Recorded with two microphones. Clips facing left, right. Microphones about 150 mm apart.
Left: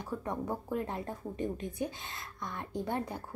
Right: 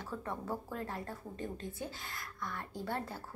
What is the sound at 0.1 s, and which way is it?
A woman's voice, 15° left (ahead or behind).